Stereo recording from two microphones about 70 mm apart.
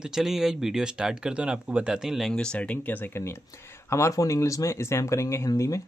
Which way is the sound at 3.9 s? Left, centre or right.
Left.